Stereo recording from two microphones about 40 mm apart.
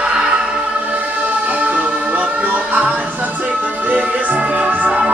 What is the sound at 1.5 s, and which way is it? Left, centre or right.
Music, right.